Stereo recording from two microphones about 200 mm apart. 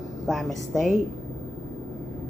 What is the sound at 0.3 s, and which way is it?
Speech, centre (ahead or behind).